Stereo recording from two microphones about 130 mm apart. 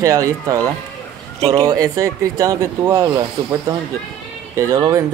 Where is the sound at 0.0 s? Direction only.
25° right (ahead or behind).